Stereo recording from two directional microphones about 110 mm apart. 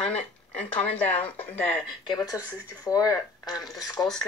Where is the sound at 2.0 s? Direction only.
40° left (ahead or behind).